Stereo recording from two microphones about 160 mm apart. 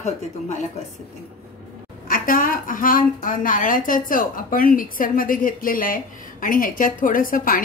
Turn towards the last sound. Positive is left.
turn(degrees=60)  # may be behind; listen again after turning